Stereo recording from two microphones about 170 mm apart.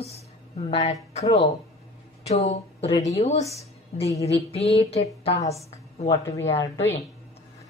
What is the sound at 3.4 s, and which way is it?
Speech, 20° left (ahead or behind).